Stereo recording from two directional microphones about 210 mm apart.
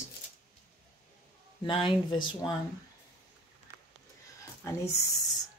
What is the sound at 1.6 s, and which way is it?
Speech, 25° left (ahead or behind).